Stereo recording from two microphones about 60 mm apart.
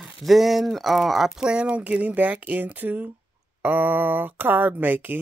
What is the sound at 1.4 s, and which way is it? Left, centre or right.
Speech, centre.